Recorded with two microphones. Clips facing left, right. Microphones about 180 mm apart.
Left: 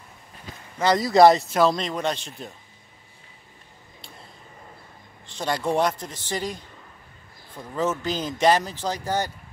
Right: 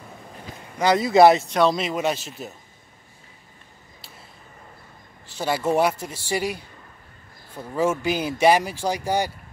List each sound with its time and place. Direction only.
0.7 s speech: 5° right (ahead or behind)
5.2 s speech: 5° right (ahead or behind)